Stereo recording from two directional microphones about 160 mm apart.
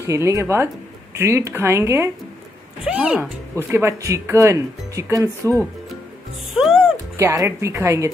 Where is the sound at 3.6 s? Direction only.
15° right (ahead or behind).